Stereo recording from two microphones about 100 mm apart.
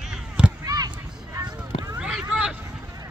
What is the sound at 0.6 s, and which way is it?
Basketball bounce, 40° right (ahead or behind).